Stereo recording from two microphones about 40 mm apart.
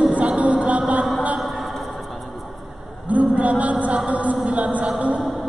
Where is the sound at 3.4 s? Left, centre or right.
Right.